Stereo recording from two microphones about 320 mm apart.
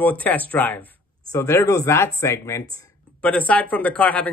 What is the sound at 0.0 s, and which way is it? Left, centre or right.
A man's voice, centre.